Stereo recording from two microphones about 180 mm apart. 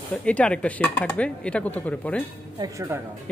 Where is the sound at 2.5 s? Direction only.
20° right (ahead or behind).